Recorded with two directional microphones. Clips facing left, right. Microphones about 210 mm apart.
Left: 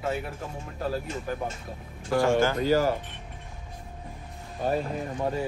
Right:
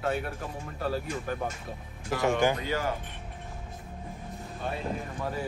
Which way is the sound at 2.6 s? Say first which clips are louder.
Left 8 dB; 35° left (ahead or behind).